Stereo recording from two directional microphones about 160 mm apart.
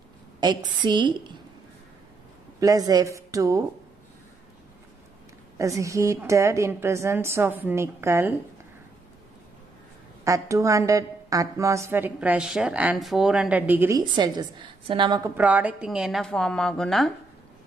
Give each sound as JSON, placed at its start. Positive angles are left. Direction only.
{"t": 0.4, "sound": "a woman's voice", "side_deg": -25}
{"t": 2.6, "sound": "a woman's voice", "side_deg": -25}
{"t": 5.6, "sound": "a woman's voice", "side_deg": -20}
{"t": 10.2, "sound": "a woman's voice", "side_deg": -20}
{"t": 14.1, "sound": "a woman's voice", "side_deg": -30}
{"t": 15.3, "sound": "a woman's voice", "side_deg": -10}